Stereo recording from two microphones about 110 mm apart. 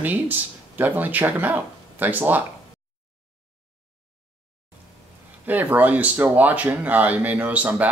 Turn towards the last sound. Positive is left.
turn(degrees=-15)  # may be behind; listen again after turning